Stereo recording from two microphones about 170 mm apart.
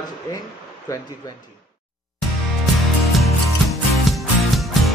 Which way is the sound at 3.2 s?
Centre (ahead or behind).